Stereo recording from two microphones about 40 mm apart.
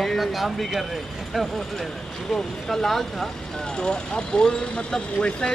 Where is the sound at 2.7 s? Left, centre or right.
Centre.